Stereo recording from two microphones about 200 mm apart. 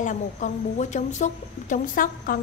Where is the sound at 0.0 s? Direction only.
40° left (ahead or behind).